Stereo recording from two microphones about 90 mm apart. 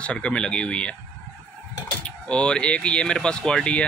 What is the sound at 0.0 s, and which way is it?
Speech, 15° left (ahead or behind).